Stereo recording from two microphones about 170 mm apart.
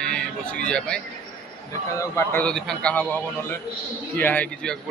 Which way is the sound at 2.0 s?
15° left (ahead or behind).